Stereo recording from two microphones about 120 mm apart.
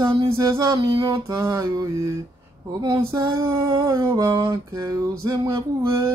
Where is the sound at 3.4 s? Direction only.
25° right (ahead or behind).